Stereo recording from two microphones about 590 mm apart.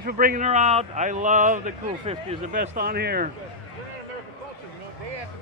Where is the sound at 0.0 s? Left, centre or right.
Centre.